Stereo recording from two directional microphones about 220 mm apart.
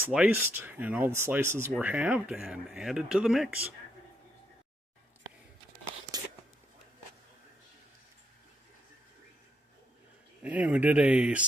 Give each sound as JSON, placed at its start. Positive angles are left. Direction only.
{"t": 0.0, "sound": "speech", "side_deg": -5}
{"t": 6.1, "sound": "a sound", "side_deg": -15}
{"t": 10.4, "sound": "speech", "side_deg": -5}